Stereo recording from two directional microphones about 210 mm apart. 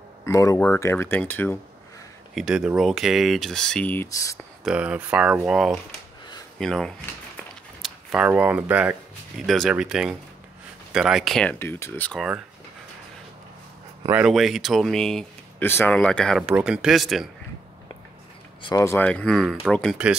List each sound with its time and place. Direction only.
0.2 s speech: 15° left (ahead or behind)
2.3 s speech: 5° right (ahead or behind); by 4.5 s 15° left (ahead or behind)
4.6 s speech: 5° right (ahead or behind)
14.0 s speech: 5° right (ahead or behind)
18.6 s speech: 15° left (ahead or behind); by 20.2 s 5° right (ahead or behind)